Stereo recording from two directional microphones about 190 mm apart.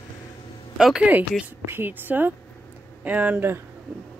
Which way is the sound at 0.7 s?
5° right (ahead or behind).